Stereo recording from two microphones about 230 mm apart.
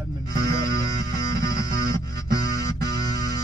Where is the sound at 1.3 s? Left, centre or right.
Right.